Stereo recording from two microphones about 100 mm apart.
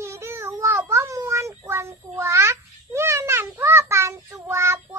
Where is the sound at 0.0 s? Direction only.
30° right (ahead or behind).